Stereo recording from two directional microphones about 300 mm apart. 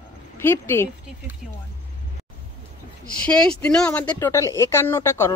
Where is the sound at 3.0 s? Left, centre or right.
Left.